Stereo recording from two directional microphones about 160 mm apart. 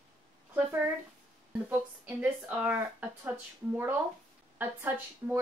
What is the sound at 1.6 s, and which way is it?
Speech, 10° right (ahead or behind).